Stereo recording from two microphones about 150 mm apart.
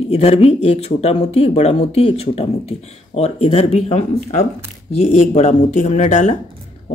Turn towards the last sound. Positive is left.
turn(degrees=55)  # may be behind; listen again after turning